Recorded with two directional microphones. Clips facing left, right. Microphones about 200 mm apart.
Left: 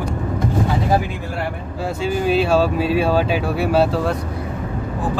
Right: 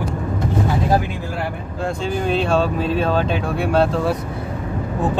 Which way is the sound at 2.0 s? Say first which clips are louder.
Left 3 dB; 5° left (ahead or behind).